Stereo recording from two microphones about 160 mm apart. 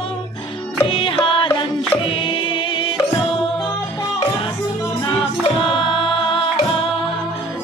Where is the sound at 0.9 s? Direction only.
35° left (ahead or behind).